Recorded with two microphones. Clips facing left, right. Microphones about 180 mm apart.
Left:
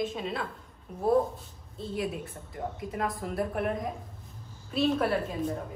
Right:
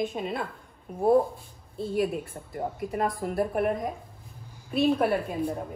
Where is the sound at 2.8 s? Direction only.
55° right (ahead or behind).